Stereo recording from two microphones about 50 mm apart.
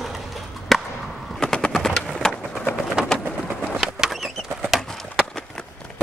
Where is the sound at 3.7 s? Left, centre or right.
Centre.